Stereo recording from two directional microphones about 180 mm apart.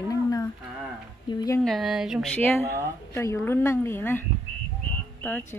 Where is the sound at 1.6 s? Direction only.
Centre (ahead or behind).